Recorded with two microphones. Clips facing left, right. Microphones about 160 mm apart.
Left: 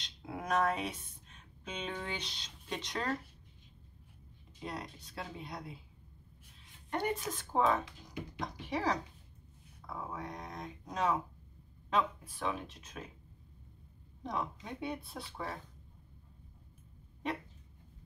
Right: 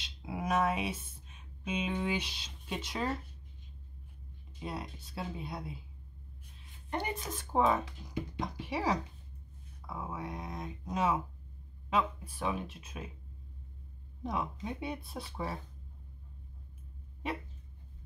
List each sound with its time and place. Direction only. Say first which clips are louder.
0.0 s speech: right 4 dB; 5° right (ahead or behind)
4.6 s speech: right 2 dB; 5° right (ahead or behind)
6.9 s speech: left 2 dB; 20° right (ahead or behind)
14.2 s speech: right 3 dB; 10° right (ahead or behind)